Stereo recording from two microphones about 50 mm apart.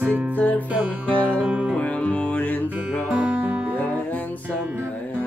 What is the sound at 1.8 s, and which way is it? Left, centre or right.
Music, left.